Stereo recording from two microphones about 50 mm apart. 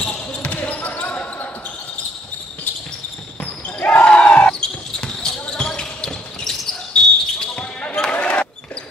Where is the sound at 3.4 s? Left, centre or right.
Left.